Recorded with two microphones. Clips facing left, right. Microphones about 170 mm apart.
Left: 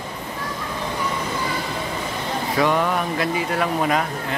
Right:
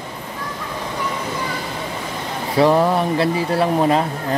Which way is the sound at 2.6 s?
35° right (ahead or behind).